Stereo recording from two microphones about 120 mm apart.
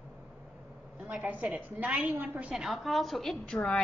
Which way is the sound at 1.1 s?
10° right (ahead or behind).